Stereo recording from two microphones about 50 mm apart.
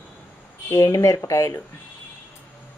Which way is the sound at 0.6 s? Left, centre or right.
Left.